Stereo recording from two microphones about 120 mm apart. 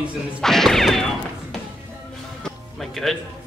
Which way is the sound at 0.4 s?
5° left (ahead or behind).